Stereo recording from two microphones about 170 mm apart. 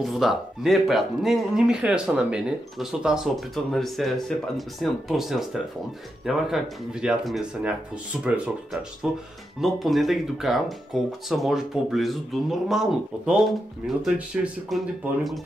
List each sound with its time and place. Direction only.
0.0 s speech: centre (ahead or behind)
9.0 s speech: centre (ahead or behind)